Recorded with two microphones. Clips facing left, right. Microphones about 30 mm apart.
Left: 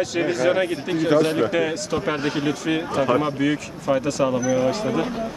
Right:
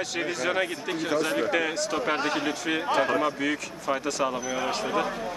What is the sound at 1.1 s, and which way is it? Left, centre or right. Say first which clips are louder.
Speech: left 8 dB; left.